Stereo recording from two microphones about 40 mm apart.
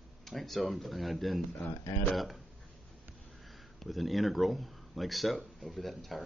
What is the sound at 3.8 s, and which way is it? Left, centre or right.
A man's voice, centre.